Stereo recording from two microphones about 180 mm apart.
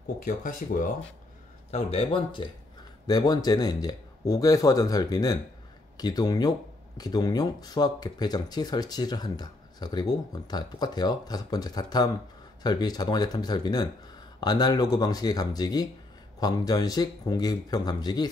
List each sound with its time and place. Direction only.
0.2 s speech: 45° left (ahead or behind)
1.7 s speech: 35° left (ahead or behind)